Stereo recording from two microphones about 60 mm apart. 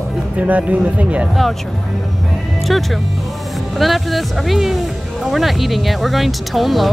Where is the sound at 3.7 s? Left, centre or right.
Centre.